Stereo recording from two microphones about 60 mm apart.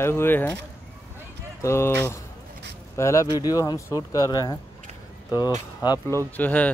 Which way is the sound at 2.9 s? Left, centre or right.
Left.